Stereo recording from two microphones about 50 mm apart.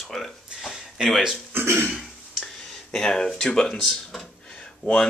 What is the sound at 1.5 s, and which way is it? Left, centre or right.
Cough, right.